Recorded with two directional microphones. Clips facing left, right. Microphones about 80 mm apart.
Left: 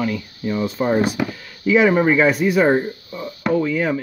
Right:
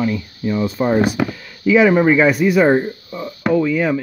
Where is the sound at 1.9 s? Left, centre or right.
Right.